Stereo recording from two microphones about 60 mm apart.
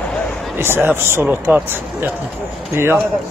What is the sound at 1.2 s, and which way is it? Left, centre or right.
Speech, right.